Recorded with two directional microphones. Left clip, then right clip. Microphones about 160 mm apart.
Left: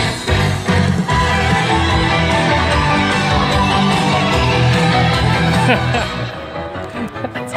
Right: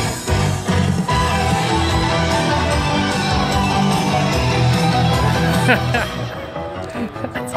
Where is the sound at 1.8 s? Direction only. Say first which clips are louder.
Left 3 dB; 10° left (ahead or behind).